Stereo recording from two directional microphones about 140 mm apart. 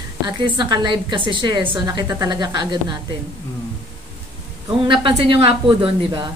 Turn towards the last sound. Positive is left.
turn(degrees=-40)  # may be behind; listen again after turning